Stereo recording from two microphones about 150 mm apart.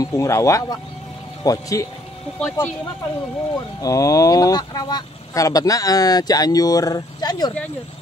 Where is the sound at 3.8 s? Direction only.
20° left (ahead or behind).